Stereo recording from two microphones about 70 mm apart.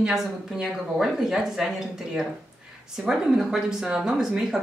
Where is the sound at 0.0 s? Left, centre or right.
Centre.